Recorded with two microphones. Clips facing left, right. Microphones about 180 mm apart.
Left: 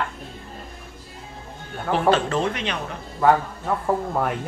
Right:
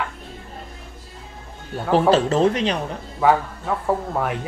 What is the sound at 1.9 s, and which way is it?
Speech, 35° right (ahead or behind).